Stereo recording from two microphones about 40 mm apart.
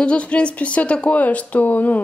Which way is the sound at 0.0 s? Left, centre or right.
Left.